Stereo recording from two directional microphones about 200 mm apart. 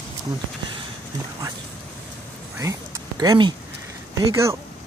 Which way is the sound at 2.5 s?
15° right (ahead or behind).